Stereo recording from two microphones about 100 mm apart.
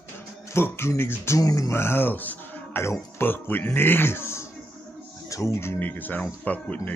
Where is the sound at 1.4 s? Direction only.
35° left (ahead or behind).